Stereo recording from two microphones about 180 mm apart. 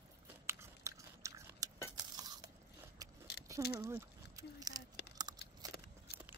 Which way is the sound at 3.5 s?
15° right (ahead or behind).